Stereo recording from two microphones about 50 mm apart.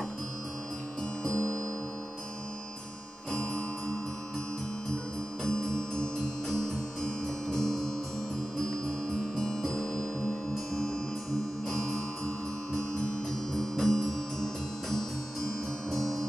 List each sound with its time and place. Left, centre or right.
1.3 s music: left
5.4 s music: centre
9.4 s music: centre
13.5 s music: centre